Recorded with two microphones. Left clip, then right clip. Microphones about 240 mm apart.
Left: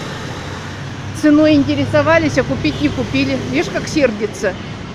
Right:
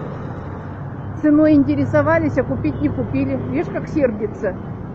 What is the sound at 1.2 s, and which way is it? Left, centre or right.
Speech, left.